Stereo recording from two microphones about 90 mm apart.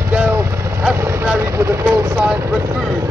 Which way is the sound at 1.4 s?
30° right (ahead or behind).